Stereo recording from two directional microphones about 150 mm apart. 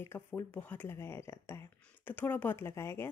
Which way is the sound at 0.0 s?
15° left (ahead or behind).